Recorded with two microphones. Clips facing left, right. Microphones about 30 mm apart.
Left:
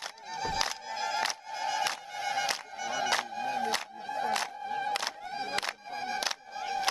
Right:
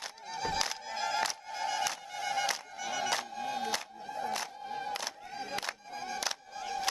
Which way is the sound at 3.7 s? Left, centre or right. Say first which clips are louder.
Left 4 dB; left.